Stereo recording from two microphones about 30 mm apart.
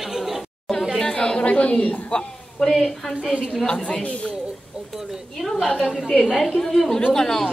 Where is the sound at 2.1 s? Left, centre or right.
Left.